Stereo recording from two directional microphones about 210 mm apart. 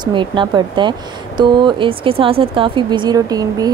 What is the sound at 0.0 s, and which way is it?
Speech, 20° right (ahead or behind).